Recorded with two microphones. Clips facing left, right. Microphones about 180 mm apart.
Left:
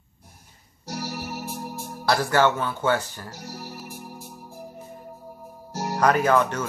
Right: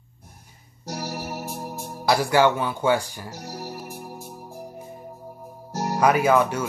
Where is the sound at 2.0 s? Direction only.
10° right (ahead or behind).